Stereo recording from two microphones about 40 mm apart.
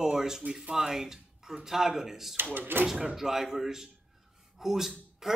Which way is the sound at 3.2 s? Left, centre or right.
Centre.